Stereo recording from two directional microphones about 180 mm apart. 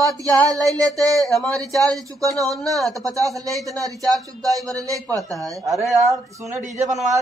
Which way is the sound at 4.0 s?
20° right (ahead or behind).